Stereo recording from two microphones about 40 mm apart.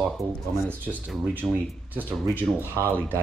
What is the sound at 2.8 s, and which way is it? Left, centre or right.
Speech, right.